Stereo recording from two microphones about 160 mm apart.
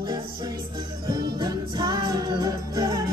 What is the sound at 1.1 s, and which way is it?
Music, 25° right (ahead or behind).